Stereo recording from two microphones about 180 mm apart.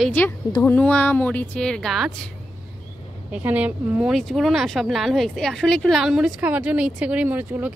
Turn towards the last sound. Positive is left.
turn(degrees=-10)  # may be behind; listen again after turning